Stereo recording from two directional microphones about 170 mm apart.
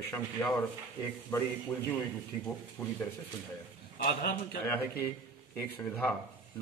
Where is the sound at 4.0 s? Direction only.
70° left (ahead or behind).